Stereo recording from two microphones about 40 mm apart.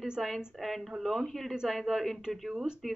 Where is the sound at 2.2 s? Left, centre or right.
Centre.